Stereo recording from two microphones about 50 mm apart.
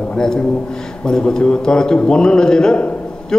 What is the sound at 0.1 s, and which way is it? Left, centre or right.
A man's voice, centre.